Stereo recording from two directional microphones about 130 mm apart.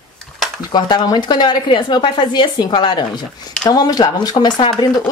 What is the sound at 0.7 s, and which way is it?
Speech, 35° left (ahead or behind).